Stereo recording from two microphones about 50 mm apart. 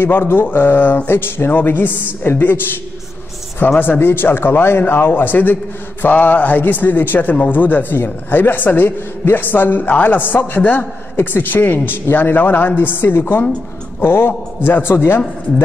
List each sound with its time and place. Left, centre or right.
0.0 s a man's voice: left
1.5 s a man's voice: left
3.7 s a man's voice: left
4.0 s a man's voice: left